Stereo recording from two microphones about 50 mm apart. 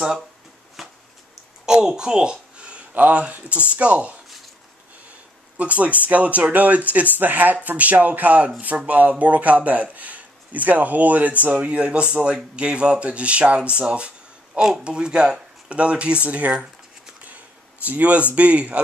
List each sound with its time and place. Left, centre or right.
0.8 s a sound: centre
1.7 s a woman's voice: centre
2.9 s speech: right
5.6 s speech: right
17.8 s speech: right